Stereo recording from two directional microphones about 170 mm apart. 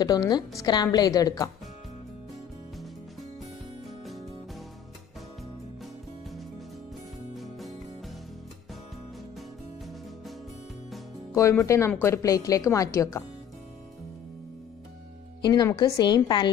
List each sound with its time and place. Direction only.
0.0 s a woman's voice: 25° left (ahead or behind)
7.3 s music: centre (ahead or behind)
11.3 s a woman's voice: 20° left (ahead or behind)
15.4 s a woman's voice: 25° left (ahead or behind)